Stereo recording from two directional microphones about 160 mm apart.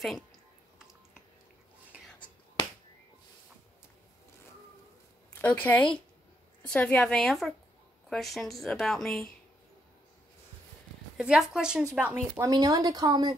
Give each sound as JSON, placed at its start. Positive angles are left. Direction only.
{"t": 5.4, "sound": "a woman's voice", "side_deg": 10}
{"t": 11.1, "sound": "a woman's voice", "side_deg": -5}
{"t": 12.4, "sound": "speech", "side_deg": -25}